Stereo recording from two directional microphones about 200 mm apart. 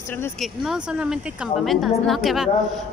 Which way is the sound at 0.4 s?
5° right (ahead or behind).